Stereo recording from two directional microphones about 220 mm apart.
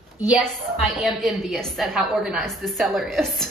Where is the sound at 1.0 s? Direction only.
Centre (ahead or behind).